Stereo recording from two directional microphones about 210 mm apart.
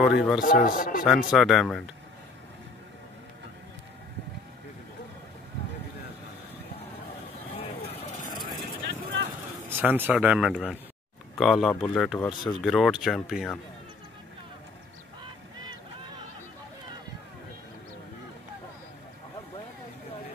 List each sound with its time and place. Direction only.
0.0 s speech: centre (ahead or behind)
0.4 s speech: 40° left (ahead or behind)
1.0 s speech: centre (ahead or behind)
9.7 s speech: 10° right (ahead or behind)
15.6 s boat: 20° right (ahead or behind)